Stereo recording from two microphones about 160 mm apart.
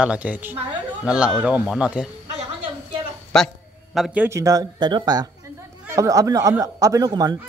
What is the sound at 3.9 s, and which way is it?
Speech, 5° right (ahead or behind).